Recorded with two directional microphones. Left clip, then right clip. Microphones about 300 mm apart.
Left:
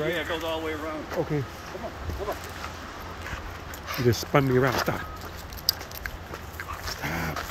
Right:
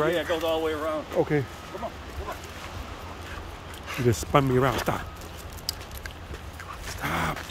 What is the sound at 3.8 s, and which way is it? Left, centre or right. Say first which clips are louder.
Speech: left 1 dB; centre.